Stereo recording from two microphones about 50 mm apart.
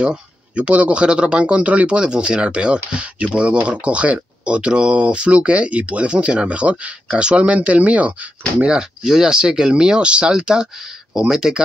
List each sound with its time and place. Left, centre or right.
0.0 s speech: right
9.0 s speech: centre